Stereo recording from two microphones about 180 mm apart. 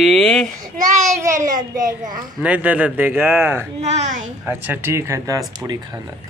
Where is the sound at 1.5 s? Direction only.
20° right (ahead or behind).